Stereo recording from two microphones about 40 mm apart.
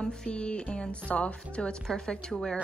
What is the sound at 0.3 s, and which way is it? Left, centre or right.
A woman's voice, left.